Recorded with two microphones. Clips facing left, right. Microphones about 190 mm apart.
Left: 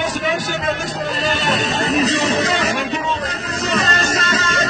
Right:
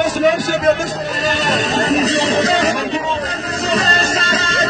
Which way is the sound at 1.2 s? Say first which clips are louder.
Right 3 dB; 40° right (ahead or behind).